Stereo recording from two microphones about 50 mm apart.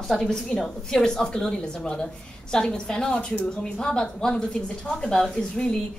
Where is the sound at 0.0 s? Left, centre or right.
Centre.